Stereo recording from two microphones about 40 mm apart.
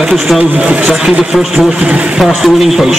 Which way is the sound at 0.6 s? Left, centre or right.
Right.